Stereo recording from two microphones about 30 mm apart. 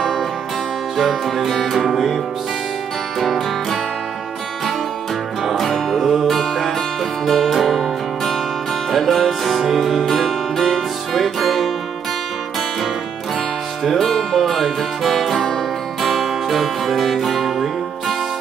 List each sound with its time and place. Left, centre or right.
0.9 s music: centre
5.4 s music: centre
5.7 s music: centre
8.9 s music: centre
9.6 s music: centre
10.0 s music: centre
13.9 s music: centre